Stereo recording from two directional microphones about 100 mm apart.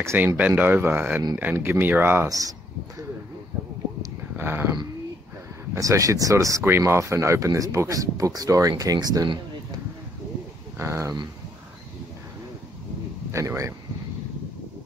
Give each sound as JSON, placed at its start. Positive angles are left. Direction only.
{"t": 0.0, "sound": "speech", "side_deg": -25}
{"t": 2.2, "sound": "speech", "side_deg": -35}
{"t": 4.4, "sound": "speech", "side_deg": -20}
{"t": 5.8, "sound": "speech", "side_deg": -35}
{"t": 10.8, "sound": "speech", "side_deg": -30}
{"t": 13.3, "sound": "speech", "side_deg": -30}